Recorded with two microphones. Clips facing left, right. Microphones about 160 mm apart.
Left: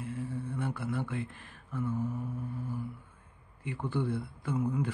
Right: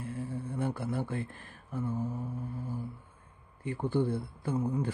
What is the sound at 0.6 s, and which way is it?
Speech, 35° right (ahead or behind).